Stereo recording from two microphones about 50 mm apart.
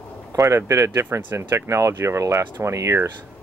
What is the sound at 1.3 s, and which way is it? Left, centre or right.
Speech, right.